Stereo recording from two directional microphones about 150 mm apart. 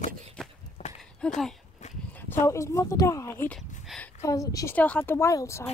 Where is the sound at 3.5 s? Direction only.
5° left (ahead or behind).